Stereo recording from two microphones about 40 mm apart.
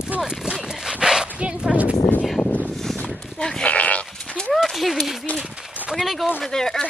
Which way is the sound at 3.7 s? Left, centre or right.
Left.